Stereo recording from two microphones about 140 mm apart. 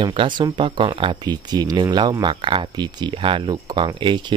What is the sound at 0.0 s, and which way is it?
Speech, 35° right (ahead or behind).